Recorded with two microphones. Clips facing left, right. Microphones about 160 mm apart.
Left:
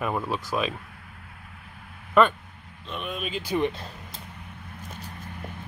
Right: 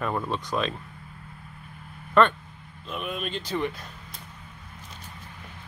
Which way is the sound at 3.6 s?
25° left (ahead or behind).